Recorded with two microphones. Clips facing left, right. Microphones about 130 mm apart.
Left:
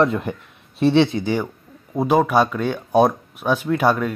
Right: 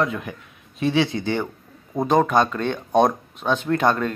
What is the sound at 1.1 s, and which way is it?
Speech, 10° left (ahead or behind).